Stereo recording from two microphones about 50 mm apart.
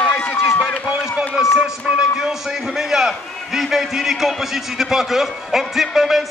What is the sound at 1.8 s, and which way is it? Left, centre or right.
Music, centre.